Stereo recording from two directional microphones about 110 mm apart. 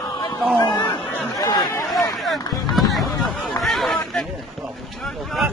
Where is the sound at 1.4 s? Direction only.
35° left (ahead or behind).